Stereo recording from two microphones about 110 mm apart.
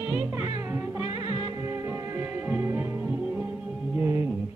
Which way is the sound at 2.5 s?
20° right (ahead or behind).